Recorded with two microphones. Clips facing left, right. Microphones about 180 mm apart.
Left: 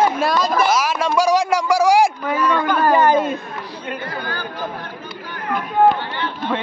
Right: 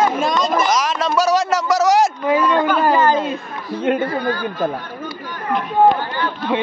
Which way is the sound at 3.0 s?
15° left (ahead or behind).